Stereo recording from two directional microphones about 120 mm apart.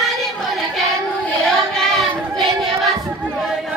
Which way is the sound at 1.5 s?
5° left (ahead or behind).